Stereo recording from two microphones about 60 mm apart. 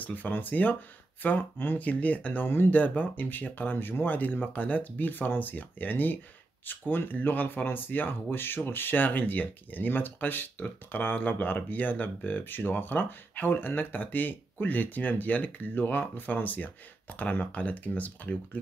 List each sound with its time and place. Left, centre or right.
0.0 s speech: left
1.8 s speech: left
2.4 s speech: left